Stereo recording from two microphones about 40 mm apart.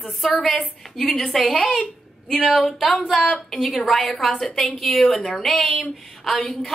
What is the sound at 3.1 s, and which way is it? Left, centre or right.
Speech, centre.